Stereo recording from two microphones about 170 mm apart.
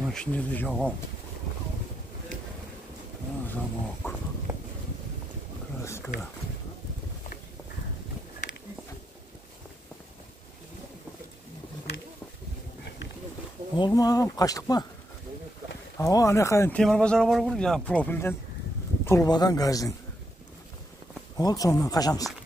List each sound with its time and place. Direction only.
0.0 s speech: 5° left (ahead or behind)
3.4 s speech: 10° left (ahead or behind)
5.9 s a sound: 15° left (ahead or behind)
13.7 s speech: 25° left (ahead or behind)
16.0 s speech: 20° left (ahead or behind)
16.7 s speech: 5° left (ahead or behind); by 19.9 s 20° left (ahead or behind)
21.4 s speech: 20° left (ahead or behind)